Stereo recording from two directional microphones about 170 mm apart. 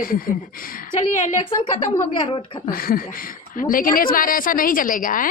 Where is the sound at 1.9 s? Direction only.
25° left (ahead or behind).